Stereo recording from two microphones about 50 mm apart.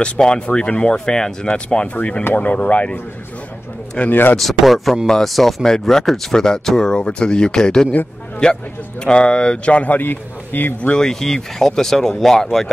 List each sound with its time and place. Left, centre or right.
0.0 s speech: centre
4.1 s a man's voice: left
4.4 s speech: centre
9.8 s a man's voice: left
11.0 s speech: centre